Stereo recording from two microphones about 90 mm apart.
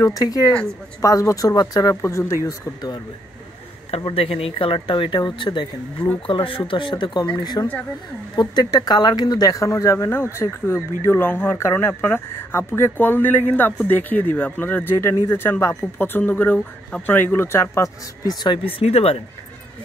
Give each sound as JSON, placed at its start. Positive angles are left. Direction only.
{"t": 0.0, "sound": "speech", "side_deg": 40}
{"t": 2.0, "sound": "speech", "side_deg": 30}
{"t": 2.4, "sound": "speech", "side_deg": 45}
{"t": 3.9, "sound": "speech", "side_deg": 90}
{"t": 6.2, "sound": "speech", "side_deg": 75}
{"t": 7.6, "sound": "speech", "side_deg": 40}
{"t": 18.8, "sound": "speech", "side_deg": 90}